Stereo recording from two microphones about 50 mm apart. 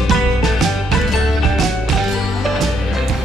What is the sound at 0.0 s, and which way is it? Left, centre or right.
Music, centre.